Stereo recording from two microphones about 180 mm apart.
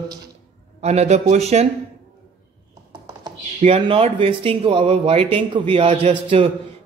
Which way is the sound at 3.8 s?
30° right (ahead or behind).